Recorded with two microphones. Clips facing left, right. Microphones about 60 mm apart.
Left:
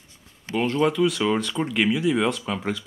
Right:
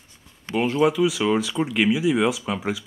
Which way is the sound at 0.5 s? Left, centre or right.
Centre.